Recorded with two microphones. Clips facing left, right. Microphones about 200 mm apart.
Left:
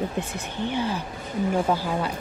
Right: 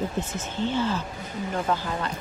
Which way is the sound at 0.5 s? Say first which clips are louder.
Right 1 dB; 15° left (ahead or behind).